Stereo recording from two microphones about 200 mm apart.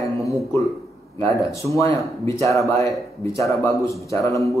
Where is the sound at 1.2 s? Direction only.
15° left (ahead or behind).